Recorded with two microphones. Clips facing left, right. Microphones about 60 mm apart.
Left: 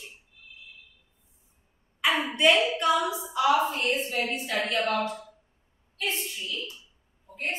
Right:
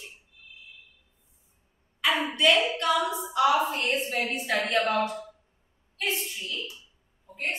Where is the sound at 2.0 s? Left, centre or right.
Centre.